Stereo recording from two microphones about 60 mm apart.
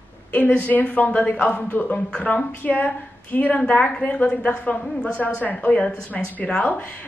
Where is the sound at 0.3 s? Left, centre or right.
Left.